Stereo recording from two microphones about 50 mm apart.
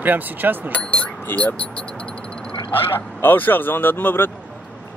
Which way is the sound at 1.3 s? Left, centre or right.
Left.